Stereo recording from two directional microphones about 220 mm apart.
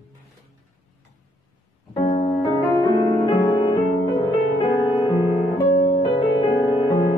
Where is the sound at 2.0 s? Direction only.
25° left (ahead or behind).